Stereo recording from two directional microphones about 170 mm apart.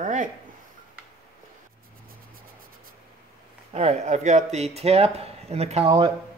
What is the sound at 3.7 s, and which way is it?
Speech, 40° right (ahead or behind).